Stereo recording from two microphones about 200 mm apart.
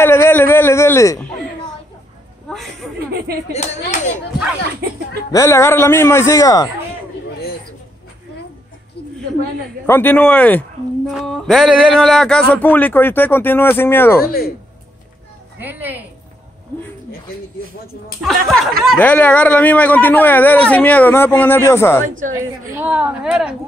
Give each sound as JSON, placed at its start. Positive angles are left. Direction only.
{"t": 0.0, "sound": "a sound", "side_deg": 10}
{"t": 2.5, "sound": "a sound", "side_deg": 0}
{"t": 3.1, "sound": "a sound", "side_deg": -50}
{"t": 3.5, "sound": "speech", "side_deg": 35}
{"t": 5.3, "sound": "speech", "side_deg": 15}
{"t": 9.8, "sound": "speech", "side_deg": 10}
{"t": 14.2, "sound": "speech", "side_deg": 50}
{"t": 15.6, "sound": "a woman's voice", "side_deg": -10}
{"t": 18.2, "sound": "speech", "side_deg": 0}
{"t": 22.3, "sound": "a woman's voice", "side_deg": -10}